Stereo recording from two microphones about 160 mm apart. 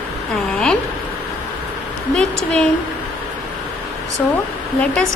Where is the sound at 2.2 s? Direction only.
5° left (ahead or behind).